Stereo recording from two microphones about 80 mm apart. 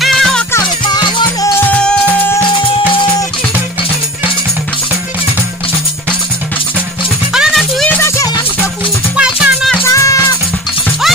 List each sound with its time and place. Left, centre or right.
0.0 s music: centre
0.8 s music: left
1.6 s music: centre
7.3 s music: centre
9.1 s music: centre
9.8 s music: left